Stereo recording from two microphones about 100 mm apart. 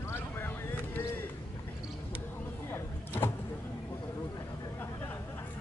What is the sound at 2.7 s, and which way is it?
Vehicle, 25° left (ahead or behind).